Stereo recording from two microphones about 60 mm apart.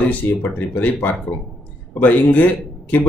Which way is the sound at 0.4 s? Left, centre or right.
Left.